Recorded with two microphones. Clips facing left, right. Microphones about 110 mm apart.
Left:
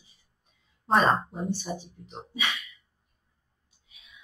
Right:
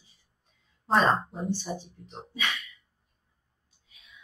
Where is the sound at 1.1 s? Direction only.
5° left (ahead or behind).